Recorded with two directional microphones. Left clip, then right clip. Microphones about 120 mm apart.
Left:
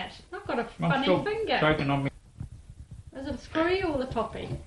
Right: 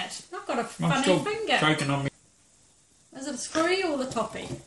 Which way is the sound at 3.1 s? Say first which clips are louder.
Right 1 dB; 90° right.